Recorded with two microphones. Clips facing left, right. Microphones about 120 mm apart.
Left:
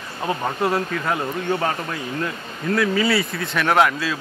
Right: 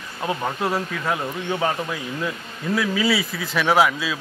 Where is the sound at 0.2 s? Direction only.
Centre (ahead or behind).